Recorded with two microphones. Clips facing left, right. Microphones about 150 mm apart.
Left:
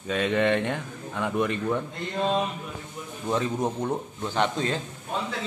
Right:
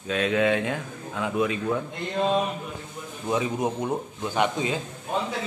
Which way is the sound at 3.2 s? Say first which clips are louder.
Right 1 dB; 10° right (ahead or behind).